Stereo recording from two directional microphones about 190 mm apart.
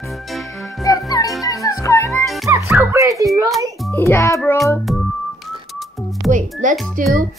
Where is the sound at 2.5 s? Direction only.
10° right (ahead or behind).